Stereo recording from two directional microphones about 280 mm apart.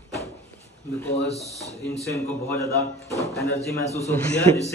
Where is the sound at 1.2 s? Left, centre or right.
Left.